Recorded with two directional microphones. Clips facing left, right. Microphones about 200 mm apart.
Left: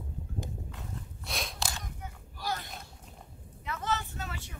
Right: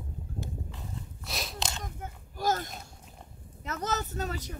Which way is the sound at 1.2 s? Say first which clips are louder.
Even; centre (ahead or behind).